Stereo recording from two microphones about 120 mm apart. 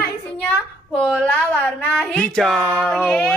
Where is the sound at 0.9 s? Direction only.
Centre (ahead or behind).